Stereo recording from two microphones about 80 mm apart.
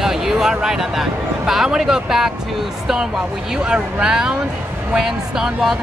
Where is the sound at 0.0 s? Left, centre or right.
Centre.